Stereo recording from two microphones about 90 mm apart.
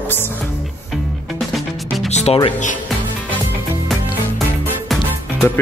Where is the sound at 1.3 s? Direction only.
Centre (ahead or behind).